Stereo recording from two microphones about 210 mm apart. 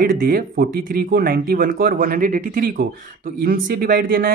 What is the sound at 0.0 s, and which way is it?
Speech, 40° right (ahead or behind).